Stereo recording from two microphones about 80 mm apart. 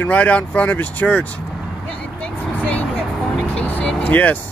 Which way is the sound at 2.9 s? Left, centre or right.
Centre.